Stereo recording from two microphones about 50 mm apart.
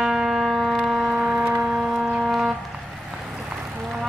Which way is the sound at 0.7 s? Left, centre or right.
Centre.